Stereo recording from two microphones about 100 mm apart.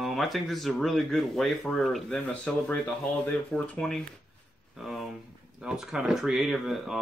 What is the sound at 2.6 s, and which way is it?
Speech, 15° left (ahead or behind).